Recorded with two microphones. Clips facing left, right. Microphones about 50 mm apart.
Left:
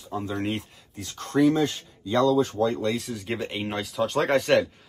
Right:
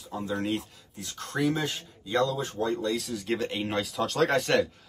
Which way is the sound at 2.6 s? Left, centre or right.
Left.